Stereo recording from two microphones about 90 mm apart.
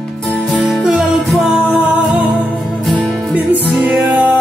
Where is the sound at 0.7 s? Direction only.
Centre (ahead or behind).